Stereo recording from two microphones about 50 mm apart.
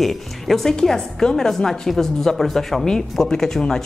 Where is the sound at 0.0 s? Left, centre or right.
Centre.